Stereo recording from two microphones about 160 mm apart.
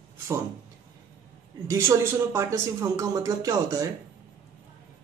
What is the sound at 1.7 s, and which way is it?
Speech, 20° right (ahead or behind).